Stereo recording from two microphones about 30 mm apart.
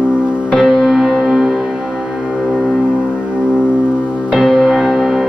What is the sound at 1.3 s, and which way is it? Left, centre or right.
Music, right.